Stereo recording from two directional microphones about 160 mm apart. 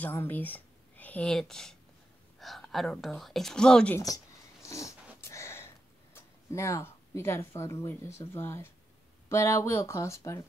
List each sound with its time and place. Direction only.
0.0 s a woman's voice: 10° left (ahead or behind)
4.6 s dog: 20° left (ahead or behind)
6.1 s speech: 20° left (ahead or behind)